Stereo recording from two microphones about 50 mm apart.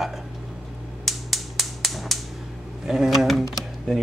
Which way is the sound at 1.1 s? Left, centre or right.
Centre.